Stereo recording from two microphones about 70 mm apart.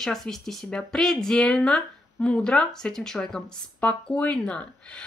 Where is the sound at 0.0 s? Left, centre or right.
Centre.